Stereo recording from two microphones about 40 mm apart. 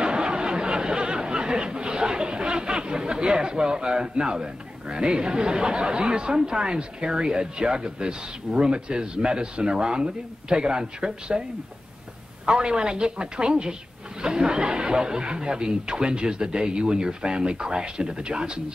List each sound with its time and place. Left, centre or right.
0.0 s speech: right
12.4 s speech: right